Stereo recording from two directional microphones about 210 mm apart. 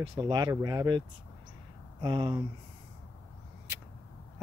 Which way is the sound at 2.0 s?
20° right (ahead or behind).